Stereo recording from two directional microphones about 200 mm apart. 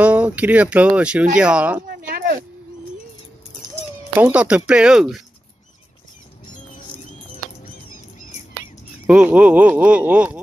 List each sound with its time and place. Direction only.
0.0 s speech: 5° right (ahead or behind)
2.0 s a sound: 45° right (ahead or behind)
3.7 s speech: 10° right (ahead or behind)
9.0 s speech: 5° right (ahead or behind)